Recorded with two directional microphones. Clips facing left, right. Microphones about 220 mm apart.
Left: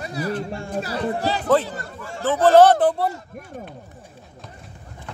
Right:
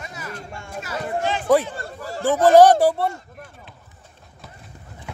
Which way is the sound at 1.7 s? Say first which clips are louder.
Right 1 dB; 35° right (ahead or behind).